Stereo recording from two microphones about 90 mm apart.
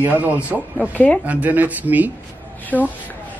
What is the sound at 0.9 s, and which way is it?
Speech, 20° left (ahead or behind).